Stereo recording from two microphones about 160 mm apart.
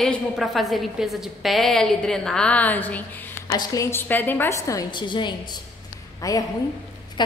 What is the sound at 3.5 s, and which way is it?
A woman's voice, 20° left (ahead or behind).